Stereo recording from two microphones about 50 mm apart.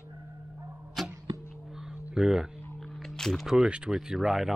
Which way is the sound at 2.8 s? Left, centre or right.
Centre.